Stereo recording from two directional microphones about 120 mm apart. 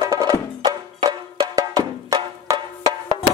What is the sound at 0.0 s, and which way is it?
Music, 30° right (ahead or behind).